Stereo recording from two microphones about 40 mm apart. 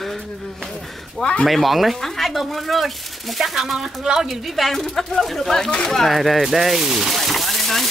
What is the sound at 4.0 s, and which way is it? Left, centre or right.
Speech, centre.